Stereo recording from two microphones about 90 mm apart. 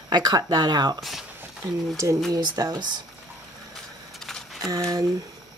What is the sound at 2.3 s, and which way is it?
Speech, 50° right (ahead or behind).